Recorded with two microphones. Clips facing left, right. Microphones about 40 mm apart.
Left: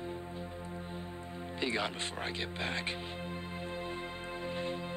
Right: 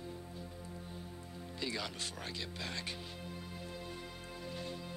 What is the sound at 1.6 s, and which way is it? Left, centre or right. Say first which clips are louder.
Music: left 6 dB; left.